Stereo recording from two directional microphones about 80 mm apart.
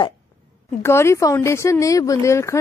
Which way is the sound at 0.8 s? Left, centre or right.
Left.